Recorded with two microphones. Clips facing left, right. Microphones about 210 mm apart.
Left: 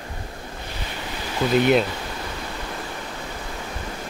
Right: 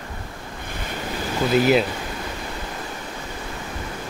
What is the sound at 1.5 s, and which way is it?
Speech, centre (ahead or behind).